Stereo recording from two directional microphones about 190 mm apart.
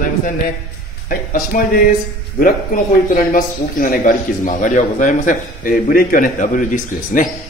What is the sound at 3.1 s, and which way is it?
A man's voice, 45° left (ahead or behind).